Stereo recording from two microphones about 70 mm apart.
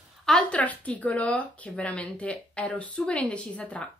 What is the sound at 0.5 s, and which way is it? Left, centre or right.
Speech, left.